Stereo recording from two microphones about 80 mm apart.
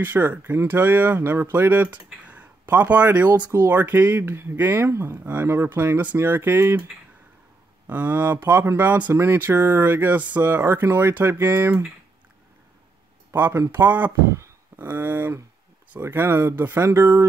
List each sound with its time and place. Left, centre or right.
0.0 s speech: right
2.0 s a sound: centre
3.5 s speech: right
7.8 s speech: right
9.1 s speech: right
13.3 s speech: right